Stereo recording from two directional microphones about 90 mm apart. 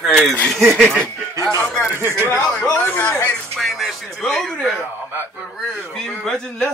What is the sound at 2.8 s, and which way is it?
Speech, 20° left (ahead or behind).